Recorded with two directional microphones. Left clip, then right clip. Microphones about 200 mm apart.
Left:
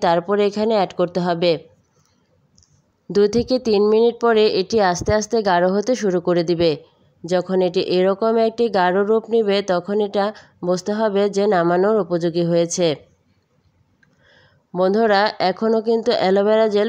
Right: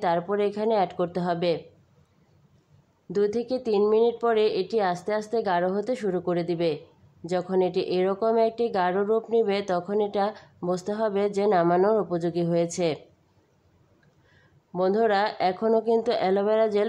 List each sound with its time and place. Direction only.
0.0 s speech: 35° left (ahead or behind)
3.1 s speech: 35° left (ahead or behind)
14.7 s speech: 35° left (ahead or behind)